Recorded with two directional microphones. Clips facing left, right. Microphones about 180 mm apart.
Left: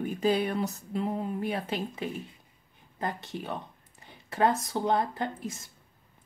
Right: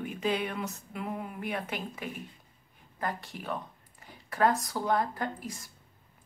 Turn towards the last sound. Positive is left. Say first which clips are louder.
# left 2 dB
turn(degrees=25)  # may be behind; listen again after turning